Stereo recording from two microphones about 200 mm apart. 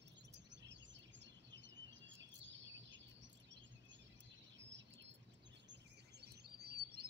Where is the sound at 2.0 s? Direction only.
65° right (ahead or behind).